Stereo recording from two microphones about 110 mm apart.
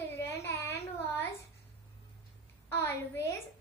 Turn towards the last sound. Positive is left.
turn(degrees=25)  # may be behind; listen again after turning